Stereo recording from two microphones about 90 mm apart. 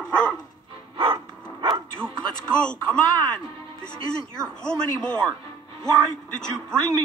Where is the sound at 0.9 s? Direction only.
90° right.